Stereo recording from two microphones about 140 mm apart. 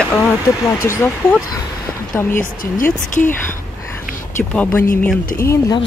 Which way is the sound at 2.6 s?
80° left.